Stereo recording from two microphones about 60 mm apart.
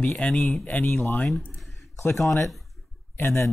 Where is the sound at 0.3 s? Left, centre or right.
Centre.